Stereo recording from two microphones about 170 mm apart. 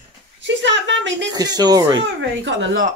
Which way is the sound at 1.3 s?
25° right (ahead or behind).